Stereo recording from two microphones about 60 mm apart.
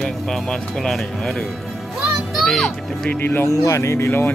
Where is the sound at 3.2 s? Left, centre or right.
Left.